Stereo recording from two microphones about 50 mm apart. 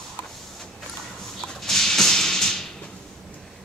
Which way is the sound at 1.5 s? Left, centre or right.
Centre.